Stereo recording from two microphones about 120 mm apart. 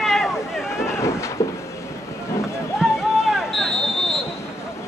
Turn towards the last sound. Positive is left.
turn(degrees=0)  # may be behind; listen again after turning